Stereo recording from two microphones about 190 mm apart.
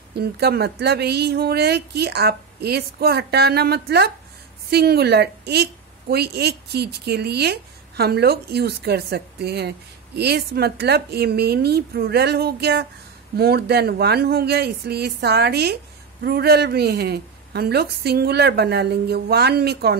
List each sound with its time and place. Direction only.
0.1 s a woman's voice: 55° right (ahead or behind)